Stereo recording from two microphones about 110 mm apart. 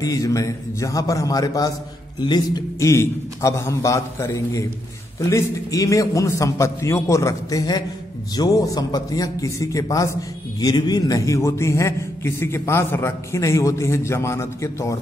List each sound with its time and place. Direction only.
0.0 s a man's voice: 30° left (ahead or behind)
2.8 s a man's voice: 25° left (ahead or behind)